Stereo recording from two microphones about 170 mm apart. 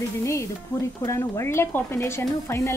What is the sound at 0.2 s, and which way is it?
A woman's voice, 15° left (ahead or behind).